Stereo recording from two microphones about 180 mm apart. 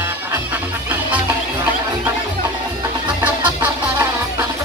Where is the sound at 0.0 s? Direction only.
10° right (ahead or behind).